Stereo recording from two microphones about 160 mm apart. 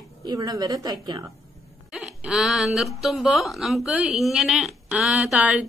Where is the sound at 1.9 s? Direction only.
5° right (ahead or behind).